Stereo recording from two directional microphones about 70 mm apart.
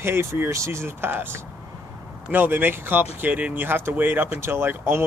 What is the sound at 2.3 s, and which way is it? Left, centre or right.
Speech, right.